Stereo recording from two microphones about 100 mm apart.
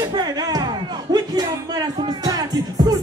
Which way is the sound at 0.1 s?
40° right (ahead or behind).